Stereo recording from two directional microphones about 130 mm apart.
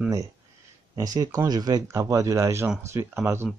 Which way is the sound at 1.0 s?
25° right (ahead or behind).